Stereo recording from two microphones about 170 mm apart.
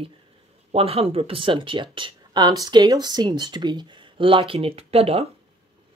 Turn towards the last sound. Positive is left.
turn(degrees=-35)  # may be behind; listen again after turning